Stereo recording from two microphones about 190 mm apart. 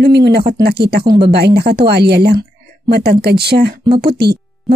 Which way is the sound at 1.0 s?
25° right (ahead or behind).